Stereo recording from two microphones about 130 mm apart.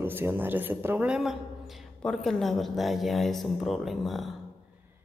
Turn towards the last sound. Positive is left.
turn(degrees=0)  # may be behind; listen again after turning